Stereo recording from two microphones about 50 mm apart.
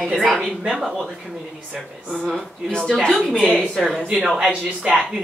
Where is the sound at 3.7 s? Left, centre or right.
Centre.